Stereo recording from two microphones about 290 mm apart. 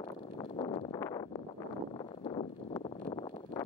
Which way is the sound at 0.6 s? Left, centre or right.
Centre.